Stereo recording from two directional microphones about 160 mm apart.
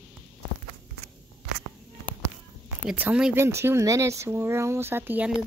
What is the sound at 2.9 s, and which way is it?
Speech, 10° right (ahead or behind).